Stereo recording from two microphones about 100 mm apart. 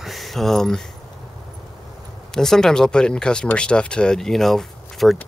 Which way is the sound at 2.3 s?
5° left (ahead or behind).